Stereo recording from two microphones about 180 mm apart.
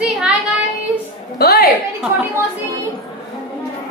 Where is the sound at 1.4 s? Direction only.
60° left (ahead or behind).